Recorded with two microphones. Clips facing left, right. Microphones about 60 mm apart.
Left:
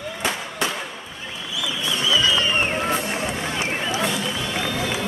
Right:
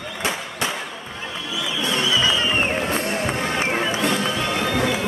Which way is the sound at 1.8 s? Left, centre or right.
Right.